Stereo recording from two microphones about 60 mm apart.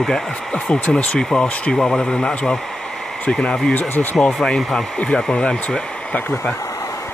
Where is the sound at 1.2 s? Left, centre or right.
Centre.